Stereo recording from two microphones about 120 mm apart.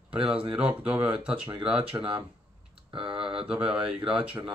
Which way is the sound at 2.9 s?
45° right (ahead or behind).